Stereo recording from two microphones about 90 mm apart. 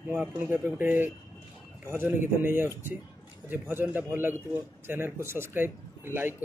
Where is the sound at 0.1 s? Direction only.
15° right (ahead or behind).